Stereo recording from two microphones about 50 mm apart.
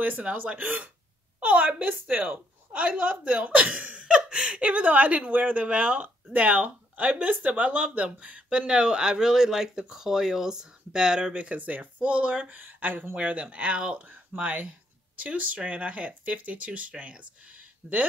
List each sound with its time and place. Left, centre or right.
0.2 s a woman's voice: right
13.1 s speech: right